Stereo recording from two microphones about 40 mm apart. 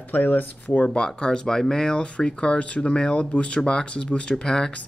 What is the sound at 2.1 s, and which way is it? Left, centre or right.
Speech, left.